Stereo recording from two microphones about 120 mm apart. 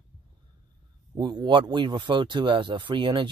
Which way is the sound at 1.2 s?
40° right (ahead or behind).